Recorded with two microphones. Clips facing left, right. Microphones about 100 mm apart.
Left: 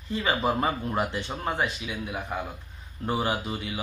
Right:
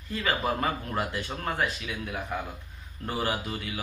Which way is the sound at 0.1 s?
25° left (ahead or behind).